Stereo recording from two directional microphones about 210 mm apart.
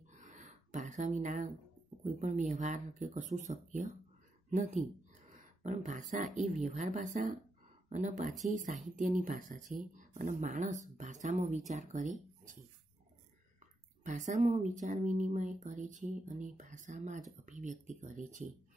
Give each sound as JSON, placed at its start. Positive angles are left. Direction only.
{"t": 0.1, "sound": "a sound", "side_deg": -35}
{"t": 2.1, "sound": "speech", "side_deg": -35}
{"t": 14.0, "sound": "speech", "side_deg": -35}